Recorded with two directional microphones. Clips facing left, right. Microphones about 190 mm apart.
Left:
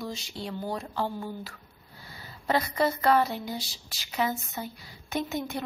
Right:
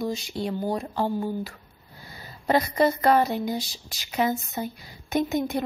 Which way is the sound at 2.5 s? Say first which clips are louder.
Right 5 dB; 20° right (ahead or behind).